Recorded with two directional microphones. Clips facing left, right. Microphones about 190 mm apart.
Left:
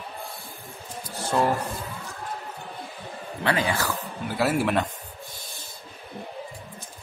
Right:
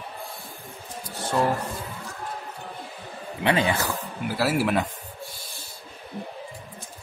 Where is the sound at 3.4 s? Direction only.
20° right (ahead or behind).